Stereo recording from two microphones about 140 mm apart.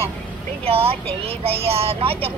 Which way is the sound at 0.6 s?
45° right (ahead or behind).